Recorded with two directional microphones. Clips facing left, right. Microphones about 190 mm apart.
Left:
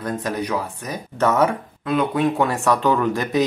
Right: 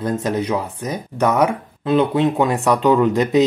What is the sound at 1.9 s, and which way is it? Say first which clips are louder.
Speech: right 4 dB; 25° right (ahead or behind).